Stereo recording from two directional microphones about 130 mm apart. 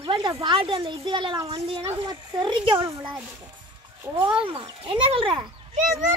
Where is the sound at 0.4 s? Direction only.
40° right (ahead or behind).